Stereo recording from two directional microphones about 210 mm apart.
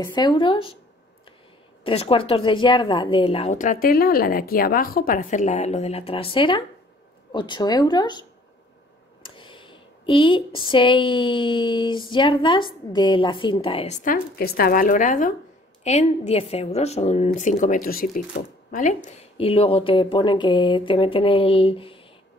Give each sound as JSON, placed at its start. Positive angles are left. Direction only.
{"t": 0.0, "sound": "a woman's voice", "side_deg": 20}
{"t": 1.9, "sound": "a woman's voice", "side_deg": 25}
{"t": 9.2, "sound": "a woman's voice", "side_deg": 25}